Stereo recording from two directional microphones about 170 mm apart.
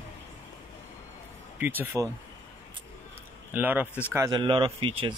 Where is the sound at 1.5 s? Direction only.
10° right (ahead or behind).